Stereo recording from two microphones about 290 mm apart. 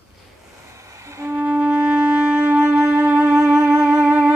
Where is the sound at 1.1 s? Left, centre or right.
Centre.